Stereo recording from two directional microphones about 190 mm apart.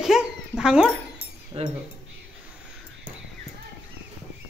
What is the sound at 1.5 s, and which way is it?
Speech, 30° right (ahead or behind).